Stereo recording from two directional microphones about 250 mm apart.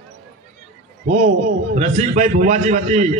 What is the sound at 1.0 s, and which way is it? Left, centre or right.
A man's voice, right.